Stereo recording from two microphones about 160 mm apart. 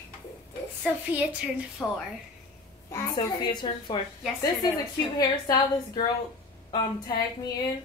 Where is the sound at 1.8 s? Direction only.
5° left (ahead or behind).